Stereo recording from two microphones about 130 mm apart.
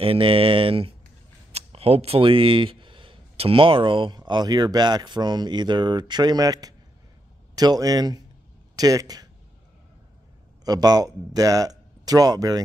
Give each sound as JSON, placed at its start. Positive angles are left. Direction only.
{"t": 0.0, "sound": "speech", "side_deg": -45}
{"t": 10.6, "sound": "speech", "side_deg": -30}